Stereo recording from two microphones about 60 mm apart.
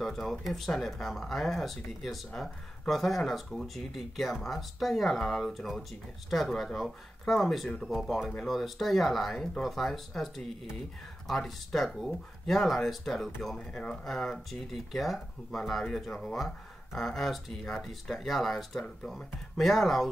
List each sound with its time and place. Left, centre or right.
0.0 s speech: centre